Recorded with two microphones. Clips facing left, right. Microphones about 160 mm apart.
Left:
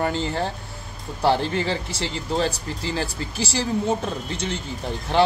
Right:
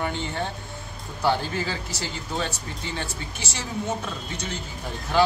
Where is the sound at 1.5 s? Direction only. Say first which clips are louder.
Left 4 dB; 30° left (ahead or behind).